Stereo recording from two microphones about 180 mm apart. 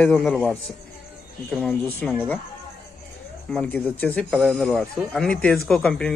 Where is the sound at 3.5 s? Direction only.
5° left (ahead or behind).